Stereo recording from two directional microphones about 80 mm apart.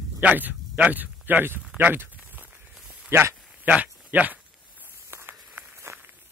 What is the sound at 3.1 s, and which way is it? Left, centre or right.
Speech, right.